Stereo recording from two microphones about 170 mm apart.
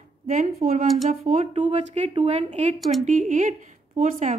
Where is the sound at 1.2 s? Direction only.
40° right (ahead or behind).